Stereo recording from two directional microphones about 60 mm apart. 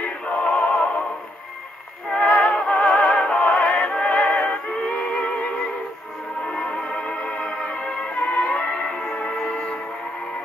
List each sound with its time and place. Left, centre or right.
0.0 s music: centre
2.0 s music: centre